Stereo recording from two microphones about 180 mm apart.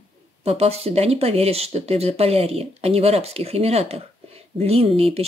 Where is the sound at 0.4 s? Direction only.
35° right (ahead or behind).